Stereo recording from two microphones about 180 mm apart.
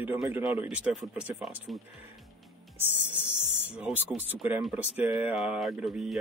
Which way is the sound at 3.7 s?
5° right (ahead or behind).